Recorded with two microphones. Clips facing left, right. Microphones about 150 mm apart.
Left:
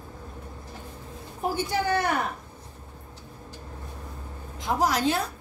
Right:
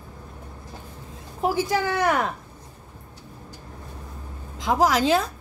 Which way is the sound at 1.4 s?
90° right.